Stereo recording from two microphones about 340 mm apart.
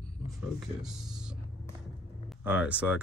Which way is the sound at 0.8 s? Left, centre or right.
Centre.